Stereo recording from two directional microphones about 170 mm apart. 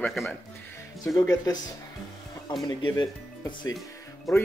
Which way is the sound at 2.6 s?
25° left (ahead or behind).